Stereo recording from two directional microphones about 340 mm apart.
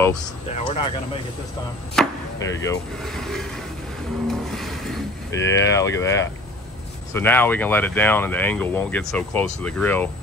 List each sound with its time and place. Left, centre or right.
0.6 s speech: centre
4.3 s speech: centre